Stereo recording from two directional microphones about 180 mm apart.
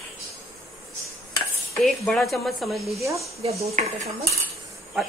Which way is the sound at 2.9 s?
15° right (ahead or behind).